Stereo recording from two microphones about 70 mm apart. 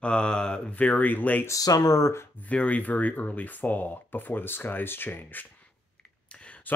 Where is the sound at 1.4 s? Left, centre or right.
Left.